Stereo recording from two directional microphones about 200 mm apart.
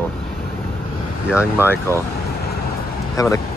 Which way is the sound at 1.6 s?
10° left (ahead or behind).